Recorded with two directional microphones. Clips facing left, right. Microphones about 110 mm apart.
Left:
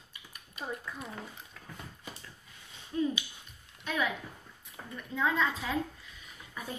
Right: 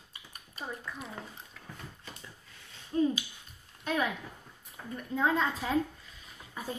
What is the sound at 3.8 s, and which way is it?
A woman's voice, 40° right (ahead or behind).